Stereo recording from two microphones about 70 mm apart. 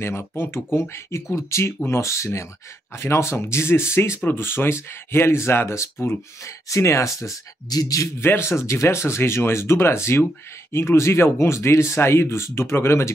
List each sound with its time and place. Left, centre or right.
0.4 s speech: left
8.2 s speech: left